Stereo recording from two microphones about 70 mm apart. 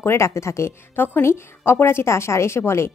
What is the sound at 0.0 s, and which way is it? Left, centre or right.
A woman's voice, left.